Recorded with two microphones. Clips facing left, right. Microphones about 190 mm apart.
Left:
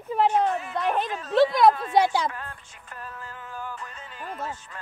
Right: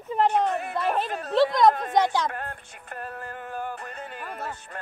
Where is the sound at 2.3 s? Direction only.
55° right (ahead or behind).